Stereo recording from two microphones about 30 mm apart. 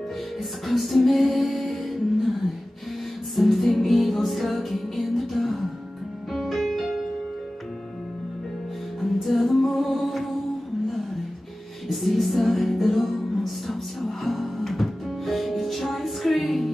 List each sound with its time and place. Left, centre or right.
0.7 s music: centre
3.3 s music: centre
9.0 s music: centre
11.9 s music: centre